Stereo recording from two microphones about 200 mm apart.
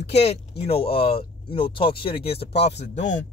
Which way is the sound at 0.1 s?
30° left (ahead or behind).